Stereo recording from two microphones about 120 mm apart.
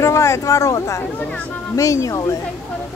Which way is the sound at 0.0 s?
25° left (ahead or behind).